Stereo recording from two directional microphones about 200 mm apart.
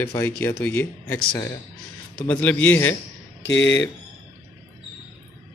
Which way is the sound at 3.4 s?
60° left (ahead or behind).